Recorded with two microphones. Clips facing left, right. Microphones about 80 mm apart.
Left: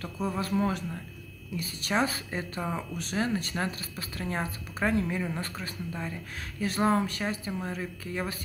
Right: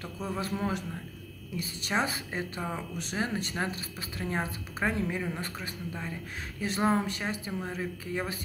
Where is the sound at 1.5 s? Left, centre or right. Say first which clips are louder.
Left 2 dB; centre.